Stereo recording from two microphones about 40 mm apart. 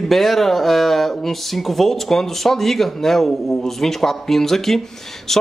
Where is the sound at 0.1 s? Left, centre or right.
Centre.